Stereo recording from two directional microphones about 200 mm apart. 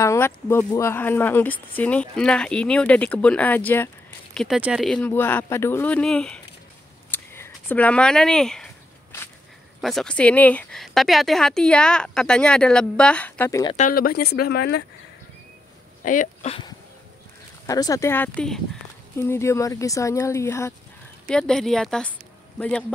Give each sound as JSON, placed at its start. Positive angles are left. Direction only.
{"t": 0.0, "sound": "speech", "side_deg": 15}
{"t": 7.1, "sound": "a sound", "side_deg": 10}
{"t": 9.8, "sound": "speech", "side_deg": 0}
{"t": 13.7, "sound": "speech", "side_deg": 45}
{"t": 16.0, "sound": "speech", "side_deg": 40}
{"t": 17.6, "sound": "speech", "side_deg": 15}